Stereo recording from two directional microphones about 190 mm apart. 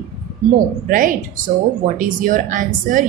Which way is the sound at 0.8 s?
45° right (ahead or behind).